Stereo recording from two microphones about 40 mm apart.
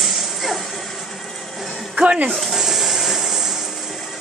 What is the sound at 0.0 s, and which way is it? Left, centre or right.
Music, centre.